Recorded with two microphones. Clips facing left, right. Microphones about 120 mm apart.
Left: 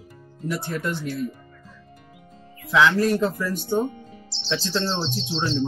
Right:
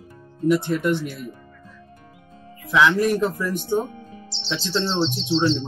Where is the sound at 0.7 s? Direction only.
20° right (ahead or behind).